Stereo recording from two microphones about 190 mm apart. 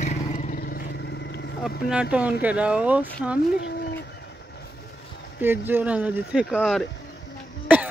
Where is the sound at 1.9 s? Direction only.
5° right (ahead or behind).